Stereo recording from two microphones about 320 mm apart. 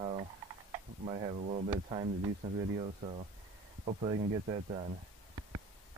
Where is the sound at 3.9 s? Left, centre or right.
Centre.